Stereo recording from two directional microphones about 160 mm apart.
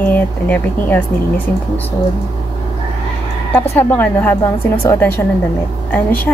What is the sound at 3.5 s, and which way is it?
A woman's voice, 15° left (ahead or behind).